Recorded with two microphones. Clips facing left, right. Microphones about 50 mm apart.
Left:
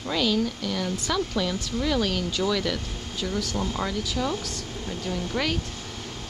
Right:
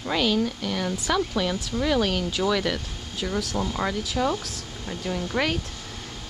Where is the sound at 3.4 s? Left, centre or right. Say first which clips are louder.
Right 1 dB; centre.